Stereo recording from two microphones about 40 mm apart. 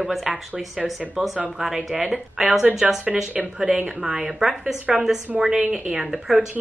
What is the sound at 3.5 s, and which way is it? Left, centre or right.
Speech, centre.